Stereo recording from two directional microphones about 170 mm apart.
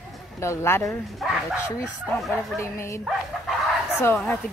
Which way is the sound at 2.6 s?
15° left (ahead or behind).